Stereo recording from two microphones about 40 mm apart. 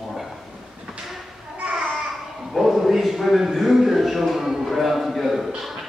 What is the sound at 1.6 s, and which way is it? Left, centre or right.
Babbling, right.